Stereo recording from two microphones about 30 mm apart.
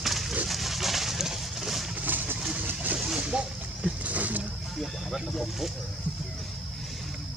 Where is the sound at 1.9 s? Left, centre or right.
Right.